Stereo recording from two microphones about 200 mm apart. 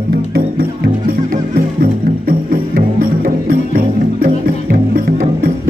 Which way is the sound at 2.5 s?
45° right (ahead or behind).